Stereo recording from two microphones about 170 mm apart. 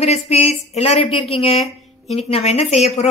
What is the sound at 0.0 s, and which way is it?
A woman's voice, 35° left (ahead or behind).